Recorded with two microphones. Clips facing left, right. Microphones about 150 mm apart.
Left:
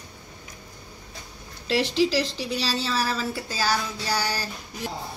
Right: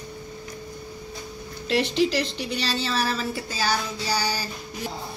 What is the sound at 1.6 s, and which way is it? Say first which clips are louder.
Speech: even; 5° left (ahead or behind).